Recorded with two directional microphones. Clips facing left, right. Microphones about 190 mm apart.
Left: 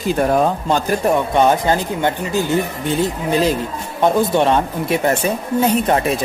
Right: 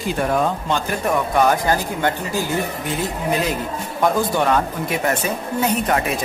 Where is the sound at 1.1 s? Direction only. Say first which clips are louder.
Even; 25° left (ahead or behind).